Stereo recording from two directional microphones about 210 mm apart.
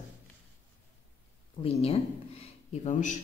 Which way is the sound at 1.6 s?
30° left (ahead or behind).